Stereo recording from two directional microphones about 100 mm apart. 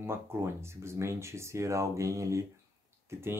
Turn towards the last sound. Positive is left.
turn(degrees=-25)  # may be behind; listen again after turning